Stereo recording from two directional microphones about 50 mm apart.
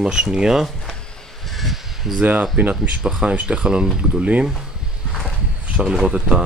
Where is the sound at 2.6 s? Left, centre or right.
Right.